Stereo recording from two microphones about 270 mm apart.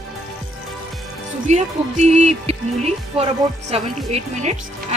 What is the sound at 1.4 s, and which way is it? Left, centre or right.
Speech, right.